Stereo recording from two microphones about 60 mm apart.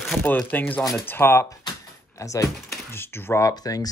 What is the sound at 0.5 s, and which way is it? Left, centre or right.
Speech, left.